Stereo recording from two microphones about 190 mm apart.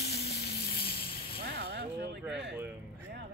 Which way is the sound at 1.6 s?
60° right (ahead or behind).